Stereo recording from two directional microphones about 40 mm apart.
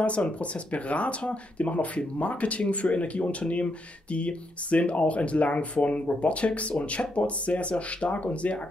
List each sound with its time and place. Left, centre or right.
0.0 s speech: left